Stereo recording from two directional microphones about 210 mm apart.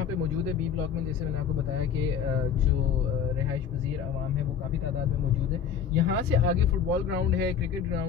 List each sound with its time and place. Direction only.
5.9 s speech: 50° right (ahead or behind)